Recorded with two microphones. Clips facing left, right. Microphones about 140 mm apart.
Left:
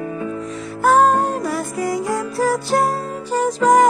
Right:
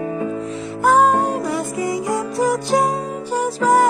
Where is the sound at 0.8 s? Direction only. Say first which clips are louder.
Even; 10° right (ahead or behind).